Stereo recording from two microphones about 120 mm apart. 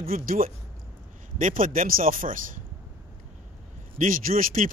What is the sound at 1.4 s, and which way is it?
Speech, 90° right.